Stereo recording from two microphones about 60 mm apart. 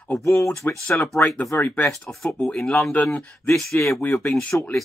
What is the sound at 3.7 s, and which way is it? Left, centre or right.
Speech, left.